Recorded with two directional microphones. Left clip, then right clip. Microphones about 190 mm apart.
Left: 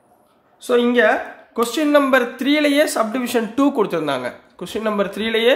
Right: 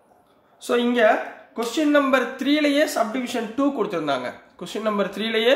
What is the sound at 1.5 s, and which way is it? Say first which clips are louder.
Speech: left 5 dB; 40° left (ahead or behind).